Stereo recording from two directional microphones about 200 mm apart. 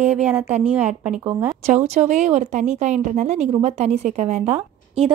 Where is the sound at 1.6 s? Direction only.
35° right (ahead or behind).